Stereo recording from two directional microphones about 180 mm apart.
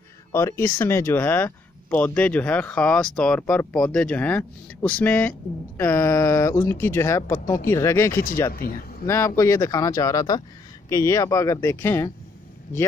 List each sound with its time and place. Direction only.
0.3 s speech: 15° left (ahead or behind)